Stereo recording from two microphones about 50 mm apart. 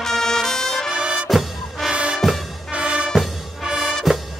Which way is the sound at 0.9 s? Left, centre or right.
Centre.